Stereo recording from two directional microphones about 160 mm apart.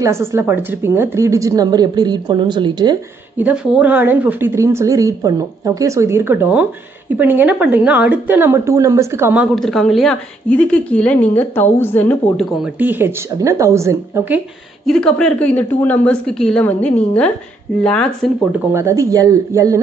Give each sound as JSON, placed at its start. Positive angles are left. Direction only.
{"t": 0.0, "sound": "a woman's voice", "side_deg": -15}
{"t": 3.3, "sound": "speech", "side_deg": -10}
{"t": 9.6, "sound": "a woman's voice", "side_deg": 0}
{"t": 12.5, "sound": "speech", "side_deg": -10}
{"t": 14.9, "sound": "a woman's voice", "side_deg": 5}
{"t": 18.7, "sound": "a woman's voice", "side_deg": -15}